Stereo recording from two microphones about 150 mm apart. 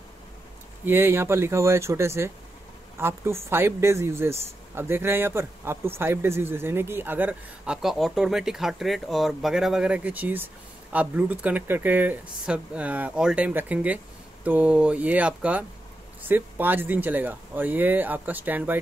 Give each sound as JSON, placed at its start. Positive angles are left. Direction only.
{"t": 0.8, "sound": "speech", "side_deg": -15}